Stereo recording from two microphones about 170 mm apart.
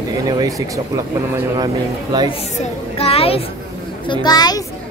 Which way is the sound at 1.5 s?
25° right (ahead or behind).